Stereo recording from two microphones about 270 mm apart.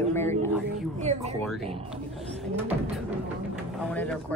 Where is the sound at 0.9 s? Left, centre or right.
Right.